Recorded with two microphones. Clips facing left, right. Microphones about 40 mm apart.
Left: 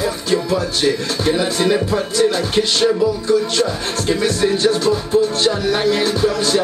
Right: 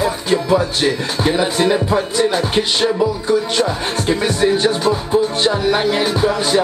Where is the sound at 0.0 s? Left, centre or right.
Centre.